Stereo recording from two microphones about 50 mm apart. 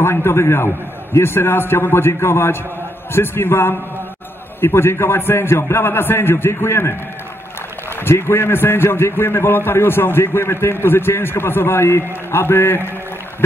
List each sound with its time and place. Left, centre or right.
0.0 s a man's voice: left
8.0 s a man's voice: left